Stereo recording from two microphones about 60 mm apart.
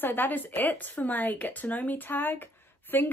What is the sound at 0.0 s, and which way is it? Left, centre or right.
Speech, left.